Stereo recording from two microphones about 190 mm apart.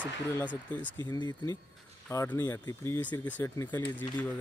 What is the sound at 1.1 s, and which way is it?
Speech, 20° left (ahead or behind).